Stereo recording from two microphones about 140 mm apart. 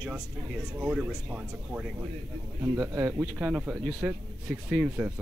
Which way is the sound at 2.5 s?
20° right (ahead or behind).